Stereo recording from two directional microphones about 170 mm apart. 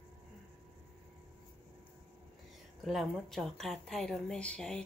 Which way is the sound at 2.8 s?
Centre (ahead or behind).